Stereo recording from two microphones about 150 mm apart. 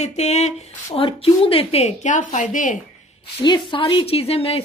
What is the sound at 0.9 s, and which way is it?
A woman's voice, 35° left (ahead or behind).